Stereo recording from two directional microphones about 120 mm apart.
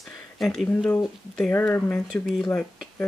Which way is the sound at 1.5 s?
20° left (ahead or behind).